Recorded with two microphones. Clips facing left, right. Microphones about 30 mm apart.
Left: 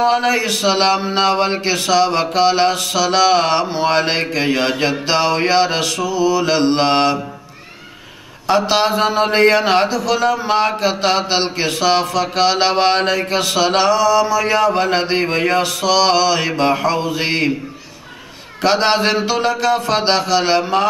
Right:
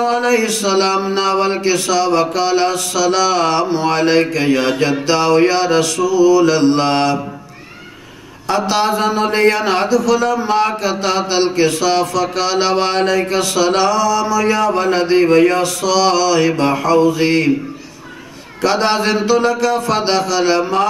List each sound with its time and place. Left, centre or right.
0.0 s mantra: left
8.5 s mantra: centre
18.6 s mantra: centre